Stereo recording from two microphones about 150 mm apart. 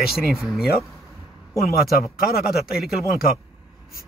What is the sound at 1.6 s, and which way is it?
Speech, 80° left.